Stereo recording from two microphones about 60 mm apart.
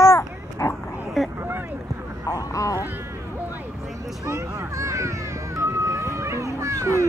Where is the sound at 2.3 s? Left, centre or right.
Left.